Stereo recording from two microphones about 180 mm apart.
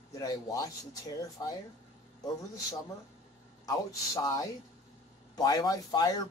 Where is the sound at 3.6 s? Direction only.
20° left (ahead or behind).